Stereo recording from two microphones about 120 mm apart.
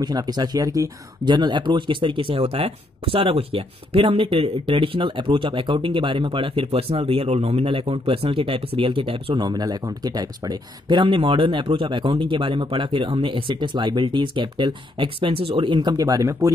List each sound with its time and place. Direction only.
0.0 s speech: 35° right (ahead or behind)